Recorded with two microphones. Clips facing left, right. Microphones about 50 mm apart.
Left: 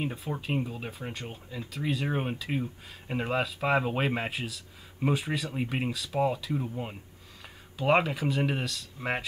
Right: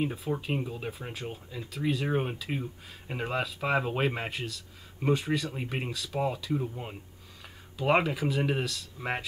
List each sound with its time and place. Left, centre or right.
0.0 s speech: centre